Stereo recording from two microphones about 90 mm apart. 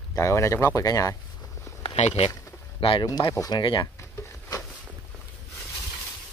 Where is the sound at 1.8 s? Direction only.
90° left.